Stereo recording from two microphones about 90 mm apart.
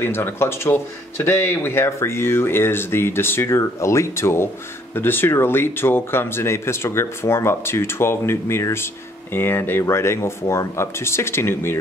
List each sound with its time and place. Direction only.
0.0 s speech: 25° left (ahead or behind)